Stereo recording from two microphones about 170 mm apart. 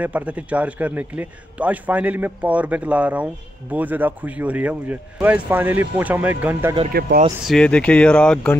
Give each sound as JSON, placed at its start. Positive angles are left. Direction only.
{"t": 0.0, "sound": "a man's voice", "side_deg": -10}
{"t": 6.9, "sound": "speech", "side_deg": -65}
{"t": 7.4, "sound": "speech", "side_deg": 5}